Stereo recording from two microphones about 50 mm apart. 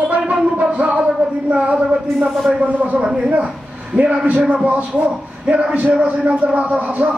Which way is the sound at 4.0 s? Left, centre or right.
Right.